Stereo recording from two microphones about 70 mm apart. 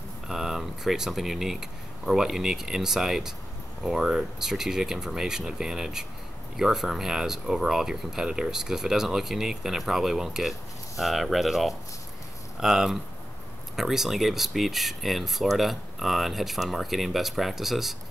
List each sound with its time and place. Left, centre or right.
0.3 s speech: centre